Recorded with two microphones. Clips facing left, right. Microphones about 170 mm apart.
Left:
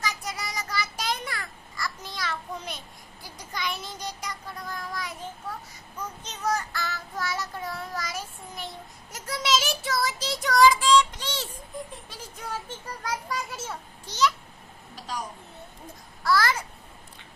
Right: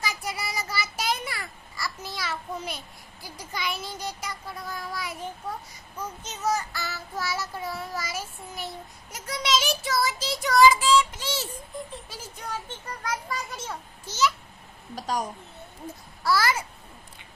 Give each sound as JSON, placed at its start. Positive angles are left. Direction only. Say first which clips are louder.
{"t": 0.0, "sound": "a sound", "louder": "right 1 dB", "side_deg": -10}
{"t": 3.3, "sound": "child singing", "louder": "right 1 dB", "side_deg": -5}
{"t": 13.5, "sound": "a child's voice", "louder": "even", "side_deg": 5}
{"t": 15.0, "sound": "a child's voice", "louder": "right 6 dB", "side_deg": -45}
{"t": 16.3, "sound": "child singing", "louder": "even", "side_deg": -5}